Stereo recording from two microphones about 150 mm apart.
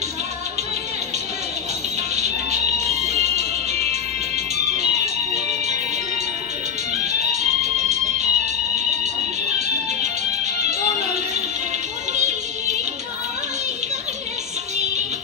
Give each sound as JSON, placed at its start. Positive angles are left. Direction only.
{"t": 2.1, "sound": "music", "side_deg": -50}
{"t": 7.1, "sound": "music", "side_deg": -50}
{"t": 10.4, "sound": "music", "side_deg": -50}
{"t": 12.1, "sound": "music", "side_deg": -50}